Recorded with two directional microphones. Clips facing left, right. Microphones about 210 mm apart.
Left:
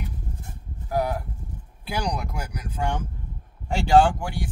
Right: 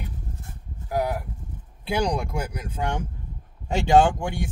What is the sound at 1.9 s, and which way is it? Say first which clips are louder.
Speech: right 4 dB; 25° right (ahead or behind).